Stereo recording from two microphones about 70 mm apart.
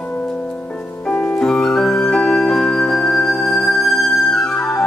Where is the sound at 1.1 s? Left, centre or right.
Left.